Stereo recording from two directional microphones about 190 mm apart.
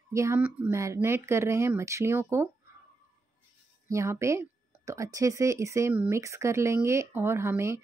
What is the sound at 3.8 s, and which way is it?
A woman's voice, 15° right (ahead or behind).